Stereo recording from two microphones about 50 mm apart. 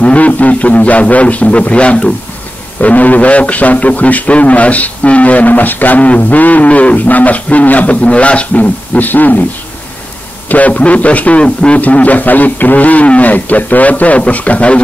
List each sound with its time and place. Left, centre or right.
0.0 s a man's voice: left
10.5 s a man's voice: left